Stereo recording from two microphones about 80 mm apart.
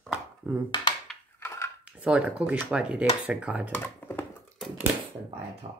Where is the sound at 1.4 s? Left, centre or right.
Left.